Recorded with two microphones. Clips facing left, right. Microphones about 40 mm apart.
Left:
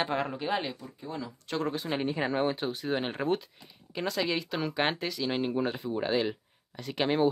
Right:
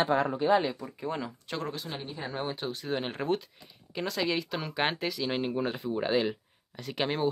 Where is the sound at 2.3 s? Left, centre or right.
Centre.